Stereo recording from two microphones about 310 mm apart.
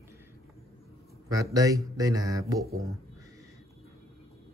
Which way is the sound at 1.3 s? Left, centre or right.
Centre.